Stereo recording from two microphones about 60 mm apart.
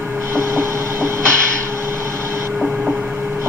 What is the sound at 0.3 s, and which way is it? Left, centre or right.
Vehicle, right.